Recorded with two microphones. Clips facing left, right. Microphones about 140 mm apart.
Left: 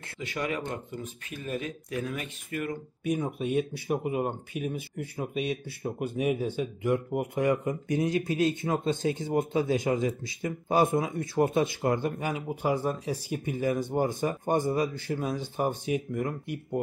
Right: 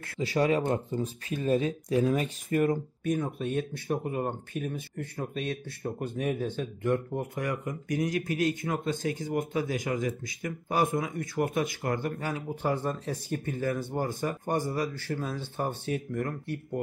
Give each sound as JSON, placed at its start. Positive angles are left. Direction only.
{"t": 0.2, "sound": "speech", "side_deg": -35}
{"t": 3.0, "sound": "speech", "side_deg": 10}
{"t": 7.3, "sound": "speech", "side_deg": 25}